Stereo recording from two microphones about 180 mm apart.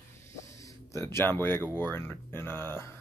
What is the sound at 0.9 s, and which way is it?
Speech, 15° left (ahead or behind).